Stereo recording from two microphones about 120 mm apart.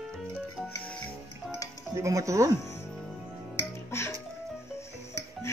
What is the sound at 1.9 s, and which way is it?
Music, 25° right (ahead or behind).